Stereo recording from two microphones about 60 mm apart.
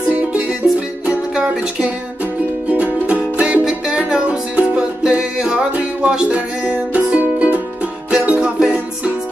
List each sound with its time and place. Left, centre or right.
0.1 s music: right
1.0 s music: centre
2.7 s music: right